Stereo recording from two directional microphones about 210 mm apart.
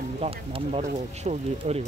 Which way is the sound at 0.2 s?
25° right (ahead or behind).